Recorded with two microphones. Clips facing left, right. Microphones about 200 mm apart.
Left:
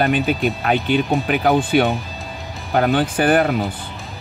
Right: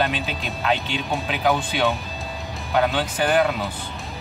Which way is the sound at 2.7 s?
50° left (ahead or behind).